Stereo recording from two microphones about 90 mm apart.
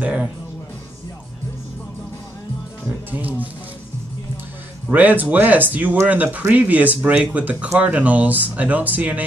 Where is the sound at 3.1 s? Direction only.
20° right (ahead or behind).